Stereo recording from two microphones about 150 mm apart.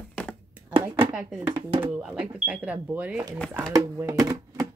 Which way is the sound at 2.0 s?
5° right (ahead or behind).